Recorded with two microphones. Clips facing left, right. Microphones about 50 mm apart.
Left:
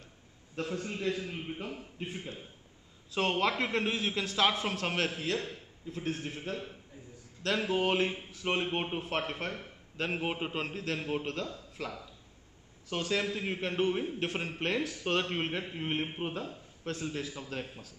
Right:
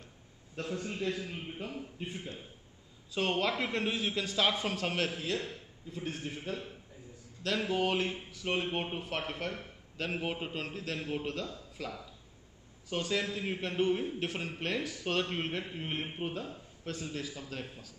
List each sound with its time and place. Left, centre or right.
0.8 s a man's voice: centre
13.1 s a man's voice: centre
14.8 s speech: centre
15.0 s a man's voice: centre